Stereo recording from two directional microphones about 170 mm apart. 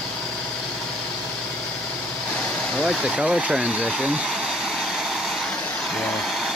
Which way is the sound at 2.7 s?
Centre (ahead or behind).